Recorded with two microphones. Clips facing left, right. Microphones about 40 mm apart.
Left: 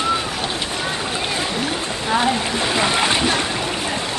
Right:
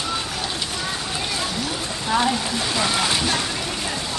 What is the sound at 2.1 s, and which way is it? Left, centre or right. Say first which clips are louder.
Speech: left 2 dB; centre.